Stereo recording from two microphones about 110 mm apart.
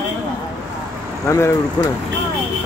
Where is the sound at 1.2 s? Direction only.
25° left (ahead or behind).